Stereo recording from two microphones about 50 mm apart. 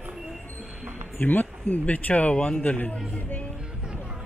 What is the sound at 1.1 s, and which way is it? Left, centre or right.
Speech, left.